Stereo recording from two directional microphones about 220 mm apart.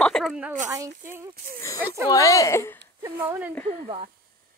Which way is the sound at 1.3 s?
40° right (ahead or behind).